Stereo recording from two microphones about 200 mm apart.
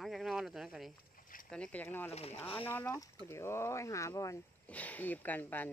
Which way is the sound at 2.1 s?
30° left (ahead or behind).